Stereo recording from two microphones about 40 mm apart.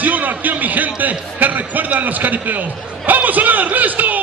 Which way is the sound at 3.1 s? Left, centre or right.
Right.